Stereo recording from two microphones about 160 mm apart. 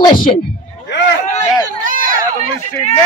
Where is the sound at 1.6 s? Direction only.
60° right (ahead or behind).